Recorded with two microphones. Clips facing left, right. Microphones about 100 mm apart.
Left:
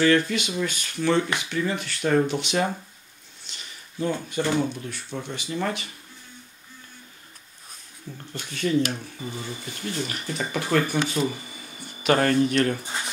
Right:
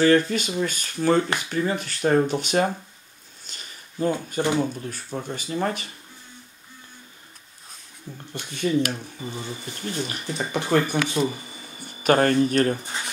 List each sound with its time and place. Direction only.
0.0 s speech: 40° right (ahead or behind)
3.4 s a sound: 45° right (ahead or behind)
4.4 s speech: 15° right (ahead or behind)
4.7 s speech: 40° right (ahead or behind)
8.3 s speech: 15° right (ahead or behind)
12.0 s speech: 40° right (ahead or behind)